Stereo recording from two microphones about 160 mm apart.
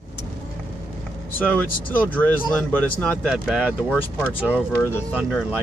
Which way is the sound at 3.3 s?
5° right (ahead or behind).